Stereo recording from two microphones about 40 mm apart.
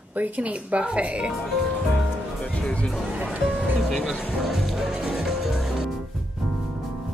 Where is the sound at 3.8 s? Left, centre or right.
Centre.